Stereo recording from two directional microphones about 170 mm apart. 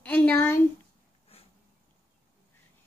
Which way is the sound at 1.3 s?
35° left (ahead or behind).